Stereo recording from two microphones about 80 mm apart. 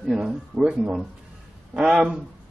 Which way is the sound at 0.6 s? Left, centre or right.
Centre.